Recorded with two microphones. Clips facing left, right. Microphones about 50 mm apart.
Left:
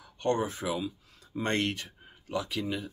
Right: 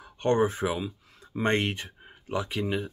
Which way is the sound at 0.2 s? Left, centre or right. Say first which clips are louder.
Right 5 dB; right.